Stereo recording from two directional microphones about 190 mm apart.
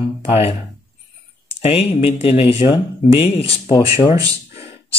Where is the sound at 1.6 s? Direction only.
30° left (ahead or behind).